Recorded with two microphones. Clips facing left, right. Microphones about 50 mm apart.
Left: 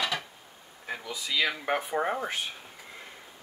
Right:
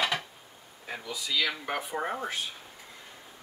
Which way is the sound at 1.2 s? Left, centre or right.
Left.